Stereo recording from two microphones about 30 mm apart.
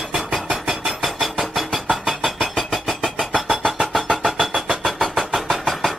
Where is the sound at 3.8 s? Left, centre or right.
Centre.